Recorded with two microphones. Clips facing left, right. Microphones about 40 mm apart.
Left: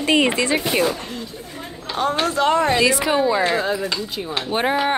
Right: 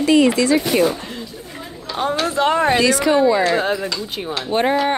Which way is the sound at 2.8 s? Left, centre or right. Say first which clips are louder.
Right 3 dB; centre.